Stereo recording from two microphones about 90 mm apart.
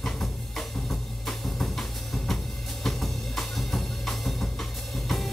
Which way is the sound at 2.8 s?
Centre (ahead or behind).